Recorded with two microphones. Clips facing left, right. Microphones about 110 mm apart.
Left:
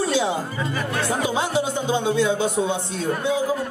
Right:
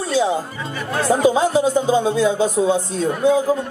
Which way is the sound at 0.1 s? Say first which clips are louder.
Right 4 dB; 35° right (ahead or behind).